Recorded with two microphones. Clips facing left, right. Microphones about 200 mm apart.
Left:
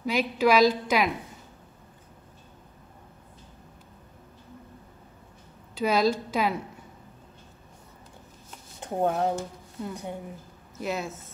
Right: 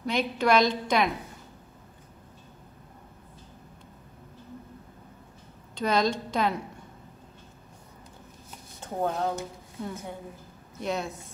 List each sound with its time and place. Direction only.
0.0 s a woman's voice: 5° left (ahead or behind)
5.8 s a woman's voice: 5° left (ahead or behind)
8.8 s speech: 20° left (ahead or behind)
9.4 s a woman's voice: centre (ahead or behind)